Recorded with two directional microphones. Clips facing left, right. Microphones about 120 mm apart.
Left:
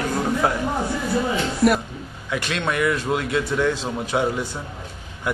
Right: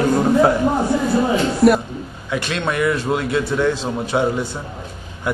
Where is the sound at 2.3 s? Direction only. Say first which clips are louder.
Right 2 dB; 30° right (ahead or behind).